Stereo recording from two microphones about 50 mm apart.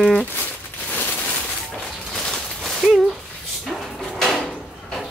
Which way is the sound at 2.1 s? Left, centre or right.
Centre.